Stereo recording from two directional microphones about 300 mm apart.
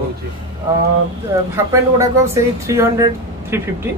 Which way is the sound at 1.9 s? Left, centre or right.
Centre.